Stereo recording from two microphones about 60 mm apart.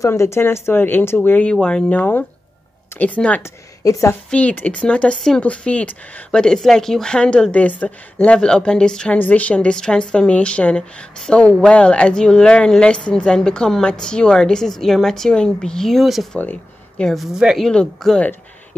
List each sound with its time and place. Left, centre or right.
0.0 s speech: left
1.5 s a woman's voice: centre
1.9 s speech: left
3.4 s a woman's voice: left
4.3 s speech: left
6.4 s a woman's voice: centre
7.5 s a woman's voice: left; by 17.4 s centre
17.6 s a woman's voice: centre